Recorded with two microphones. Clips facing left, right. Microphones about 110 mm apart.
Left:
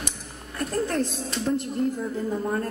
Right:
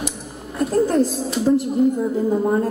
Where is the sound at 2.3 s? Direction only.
25° right (ahead or behind).